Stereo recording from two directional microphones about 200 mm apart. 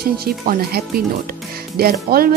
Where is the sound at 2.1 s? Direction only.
50° right (ahead or behind).